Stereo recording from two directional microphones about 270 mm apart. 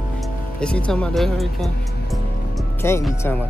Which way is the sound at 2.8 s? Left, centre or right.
Centre.